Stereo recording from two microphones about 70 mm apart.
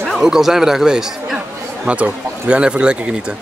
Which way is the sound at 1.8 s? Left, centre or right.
Centre.